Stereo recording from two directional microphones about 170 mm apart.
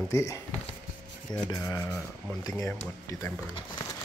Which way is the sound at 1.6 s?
15° left (ahead or behind).